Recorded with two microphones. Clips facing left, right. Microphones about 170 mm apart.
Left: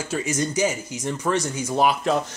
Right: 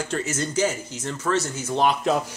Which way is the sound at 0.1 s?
15° left (ahead or behind).